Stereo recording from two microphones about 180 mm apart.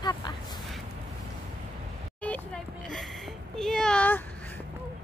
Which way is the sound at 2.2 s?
5° left (ahead or behind).